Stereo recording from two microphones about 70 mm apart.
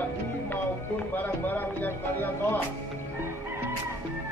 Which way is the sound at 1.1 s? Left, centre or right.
Left.